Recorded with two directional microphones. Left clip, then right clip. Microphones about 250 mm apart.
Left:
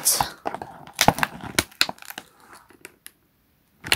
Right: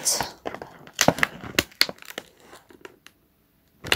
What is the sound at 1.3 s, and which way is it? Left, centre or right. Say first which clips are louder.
Crumpling: even; left.